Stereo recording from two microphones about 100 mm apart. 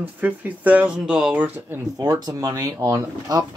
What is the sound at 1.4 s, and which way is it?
Speech, 20° right (ahead or behind).